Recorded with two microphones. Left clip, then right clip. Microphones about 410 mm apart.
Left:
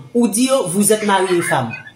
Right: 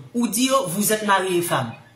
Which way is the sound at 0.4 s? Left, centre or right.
Right.